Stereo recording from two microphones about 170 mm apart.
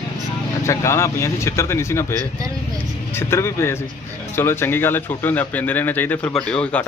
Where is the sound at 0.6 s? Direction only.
15° left (ahead or behind).